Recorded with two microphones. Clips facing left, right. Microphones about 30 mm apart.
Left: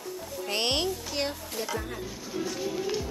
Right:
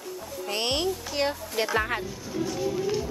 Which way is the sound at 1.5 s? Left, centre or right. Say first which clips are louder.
Right 7 dB; right.